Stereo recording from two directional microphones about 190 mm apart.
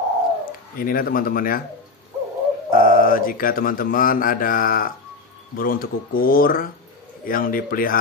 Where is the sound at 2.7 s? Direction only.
50° left (ahead or behind).